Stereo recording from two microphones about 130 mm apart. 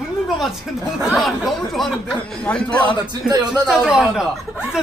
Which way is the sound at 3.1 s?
30° right (ahead or behind).